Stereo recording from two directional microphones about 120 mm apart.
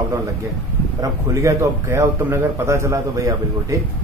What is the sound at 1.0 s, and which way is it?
A man's voice, 25° right (ahead or behind).